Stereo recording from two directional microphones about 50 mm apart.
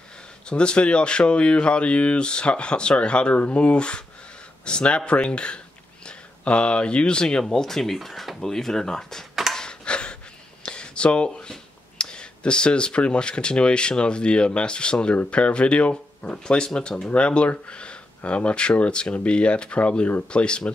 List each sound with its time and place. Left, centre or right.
0.5 s speech: centre
9.5 s a sound: centre
10.6 s speech: centre